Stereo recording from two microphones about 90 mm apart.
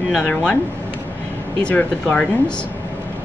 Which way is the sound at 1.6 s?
20° left (ahead or behind).